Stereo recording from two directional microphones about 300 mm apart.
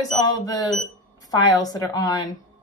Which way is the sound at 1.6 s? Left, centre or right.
Centre.